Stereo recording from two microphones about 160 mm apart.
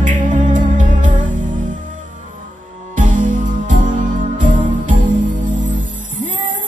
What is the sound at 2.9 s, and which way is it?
Music, 55° right (ahead or behind).